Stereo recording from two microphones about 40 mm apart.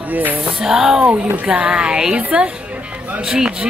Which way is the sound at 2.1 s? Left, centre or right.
Right.